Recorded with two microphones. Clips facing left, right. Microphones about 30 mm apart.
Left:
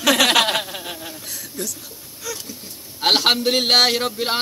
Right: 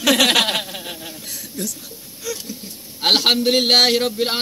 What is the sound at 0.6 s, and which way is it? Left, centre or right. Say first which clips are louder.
Insect: even; centre.